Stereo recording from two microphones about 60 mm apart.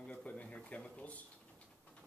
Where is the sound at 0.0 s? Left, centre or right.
Left.